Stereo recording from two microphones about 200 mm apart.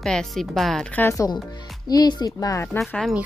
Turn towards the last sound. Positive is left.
turn(degrees=0)  # may be behind; listen again after turning